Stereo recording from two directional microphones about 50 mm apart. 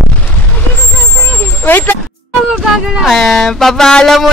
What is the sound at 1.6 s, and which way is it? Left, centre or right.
Speech, left.